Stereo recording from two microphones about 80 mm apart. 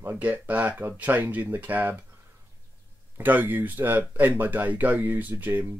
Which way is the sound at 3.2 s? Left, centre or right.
Right.